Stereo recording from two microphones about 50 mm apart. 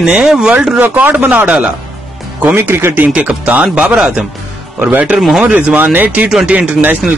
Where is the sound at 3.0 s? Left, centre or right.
Right.